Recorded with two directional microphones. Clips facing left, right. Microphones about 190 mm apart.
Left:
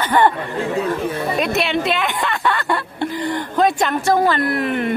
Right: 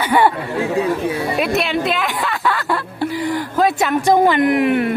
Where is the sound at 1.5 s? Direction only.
Centre (ahead or behind).